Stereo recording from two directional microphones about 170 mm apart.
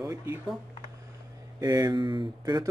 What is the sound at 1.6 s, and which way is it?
Speech, 20° right (ahead or behind).